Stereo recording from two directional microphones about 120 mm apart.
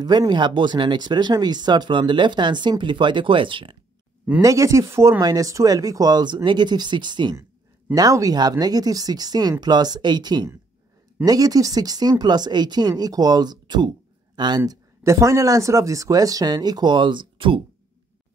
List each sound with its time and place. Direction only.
0.0 s speech: 35° right (ahead or behind)
4.4 s speech: 25° right (ahead or behind)
7.9 s speech: 30° right (ahead or behind)
14.7 s speech: 25° right (ahead or behind); by 17.6 s 45° right (ahead or behind)